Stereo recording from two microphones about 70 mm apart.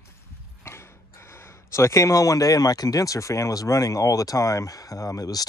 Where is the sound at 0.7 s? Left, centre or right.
Left.